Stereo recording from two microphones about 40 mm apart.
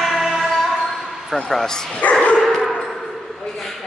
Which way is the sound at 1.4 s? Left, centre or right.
Centre.